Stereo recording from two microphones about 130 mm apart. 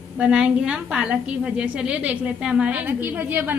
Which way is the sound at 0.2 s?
5° right (ahead or behind).